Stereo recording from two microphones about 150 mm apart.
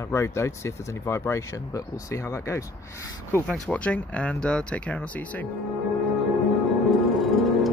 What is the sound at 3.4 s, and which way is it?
Speech, 5° left (ahead or behind).